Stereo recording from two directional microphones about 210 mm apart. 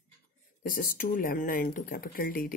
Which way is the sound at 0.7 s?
40° left (ahead or behind).